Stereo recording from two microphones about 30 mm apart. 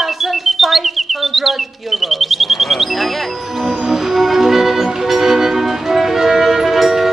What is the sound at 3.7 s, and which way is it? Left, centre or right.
Music, centre.